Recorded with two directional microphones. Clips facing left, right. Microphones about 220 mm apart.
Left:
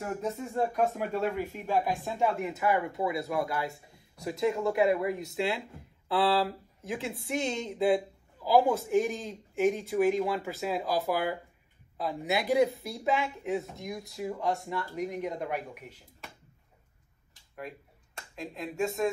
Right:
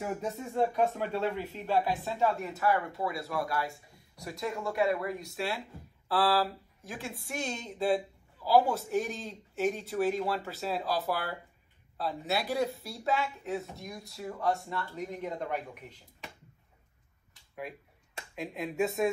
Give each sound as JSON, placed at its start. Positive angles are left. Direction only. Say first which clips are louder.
{"t": 0.0, "sound": "speech", "louder": "left 1 dB", "side_deg": 0}
{"t": 17.6, "sound": "speech", "louder": "even", "side_deg": -5}